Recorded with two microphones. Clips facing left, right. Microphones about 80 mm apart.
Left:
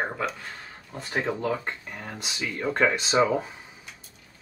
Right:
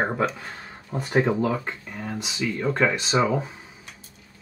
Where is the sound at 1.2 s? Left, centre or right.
Centre.